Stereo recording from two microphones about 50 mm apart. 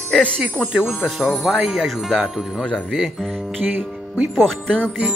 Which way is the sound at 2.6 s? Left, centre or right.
Centre.